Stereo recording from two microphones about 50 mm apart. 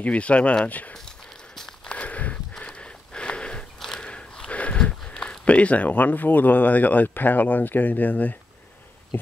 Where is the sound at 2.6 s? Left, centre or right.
Centre.